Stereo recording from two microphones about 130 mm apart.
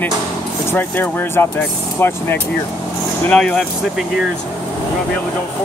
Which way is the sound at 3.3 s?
5° left (ahead or behind).